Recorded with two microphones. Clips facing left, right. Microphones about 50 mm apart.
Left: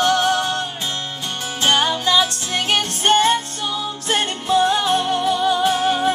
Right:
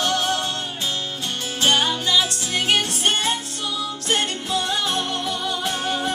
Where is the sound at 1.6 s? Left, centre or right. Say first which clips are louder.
Left 2 dB; left.